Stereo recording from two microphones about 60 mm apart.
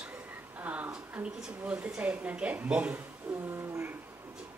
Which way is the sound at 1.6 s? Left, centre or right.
Right.